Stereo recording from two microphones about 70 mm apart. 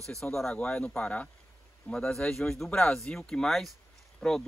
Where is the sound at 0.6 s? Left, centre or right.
Centre.